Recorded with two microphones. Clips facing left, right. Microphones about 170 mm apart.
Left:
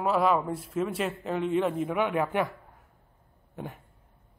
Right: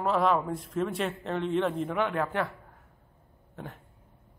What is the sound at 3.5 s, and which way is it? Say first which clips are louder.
Speech: left 3 dB; 10° left (ahead or behind).